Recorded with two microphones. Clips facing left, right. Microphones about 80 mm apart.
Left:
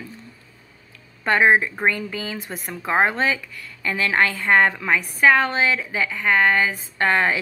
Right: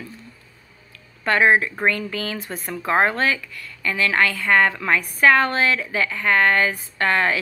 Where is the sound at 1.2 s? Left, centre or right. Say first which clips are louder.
Even; left.